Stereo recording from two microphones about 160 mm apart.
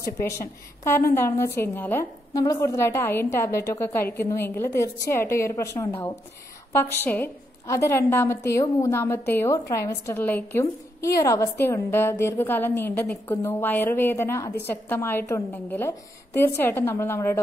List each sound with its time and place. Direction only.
0.2 s a woman's voice: 15° left (ahead or behind)